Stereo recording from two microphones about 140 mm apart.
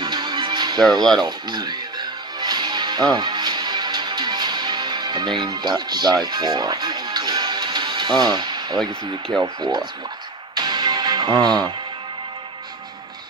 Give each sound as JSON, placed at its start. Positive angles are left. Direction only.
{"t": 0.0, "sound": "music", "side_deg": -30}
{"t": 9.4, "sound": "speech", "side_deg": -30}
{"t": 10.5, "sound": "music", "side_deg": -30}